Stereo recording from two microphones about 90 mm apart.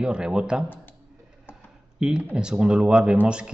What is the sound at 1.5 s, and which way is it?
Computer keyboard, 25° left (ahead or behind).